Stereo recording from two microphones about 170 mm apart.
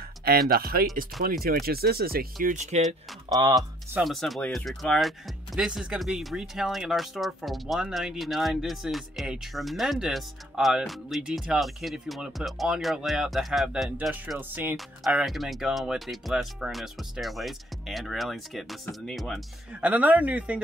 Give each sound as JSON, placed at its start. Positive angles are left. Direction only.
{"t": 0.2, "sound": "speech", "side_deg": -60}
{"t": 2.4, "sound": "speech", "side_deg": -45}
{"t": 3.3, "sound": "speech", "side_deg": -25}
{"t": 3.9, "sound": "speech", "side_deg": 0}